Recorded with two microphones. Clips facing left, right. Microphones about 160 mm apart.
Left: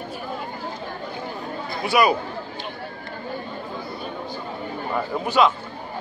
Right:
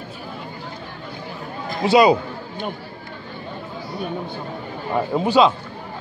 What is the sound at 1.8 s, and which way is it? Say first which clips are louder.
Speech: right 5 dB; 20° right (ahead or behind).